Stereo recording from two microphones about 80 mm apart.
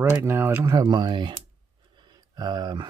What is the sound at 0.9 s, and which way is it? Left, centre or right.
Speech, right.